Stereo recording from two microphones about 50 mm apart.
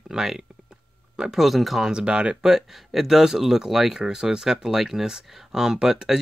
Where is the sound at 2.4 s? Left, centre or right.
Centre.